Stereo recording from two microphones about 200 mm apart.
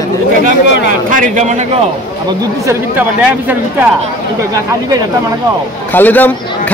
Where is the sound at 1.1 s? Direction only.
40° right (ahead or behind).